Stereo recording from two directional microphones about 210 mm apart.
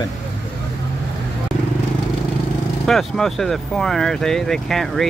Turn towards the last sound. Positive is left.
turn(degrees=0)  # may be behind; listen again after turning